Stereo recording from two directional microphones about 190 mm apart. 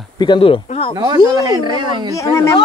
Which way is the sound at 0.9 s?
20° right (ahead or behind).